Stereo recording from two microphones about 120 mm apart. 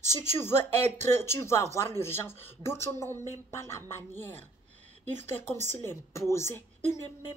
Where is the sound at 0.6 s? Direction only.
70° right (ahead or behind).